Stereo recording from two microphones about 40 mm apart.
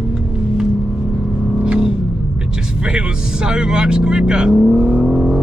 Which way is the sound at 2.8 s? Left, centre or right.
Right.